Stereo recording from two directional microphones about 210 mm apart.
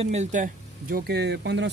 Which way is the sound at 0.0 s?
35° right (ahead or behind).